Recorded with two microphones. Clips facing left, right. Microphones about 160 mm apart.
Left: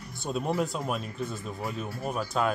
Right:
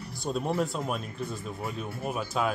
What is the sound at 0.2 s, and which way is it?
Speech, centre (ahead or behind).